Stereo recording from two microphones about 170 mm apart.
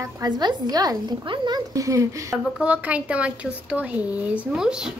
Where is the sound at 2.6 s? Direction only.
10° right (ahead or behind).